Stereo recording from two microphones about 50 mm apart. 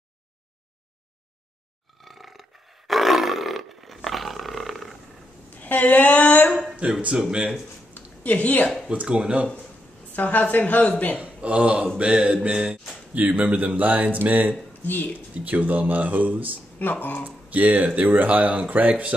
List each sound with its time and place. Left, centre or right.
2.0 s roar: centre
5.5 s a sound: left
6.8 s a man's voice: right
7.2 s speech: centre
7.9 s a sound: left
9.0 s a man's voice: centre
10.1 s speech: left
11.1 s a man's voice: right
16.7 s speech: left
17.5 s speech: right